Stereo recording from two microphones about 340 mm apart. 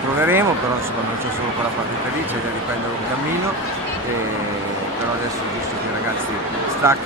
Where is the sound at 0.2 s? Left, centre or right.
Centre.